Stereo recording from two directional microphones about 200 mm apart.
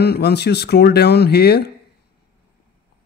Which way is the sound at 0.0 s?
55° left (ahead or behind).